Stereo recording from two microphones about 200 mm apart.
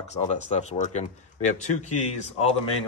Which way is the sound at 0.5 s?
35° left (ahead or behind).